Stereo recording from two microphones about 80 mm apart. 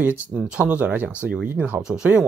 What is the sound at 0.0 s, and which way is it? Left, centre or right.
Speech, right.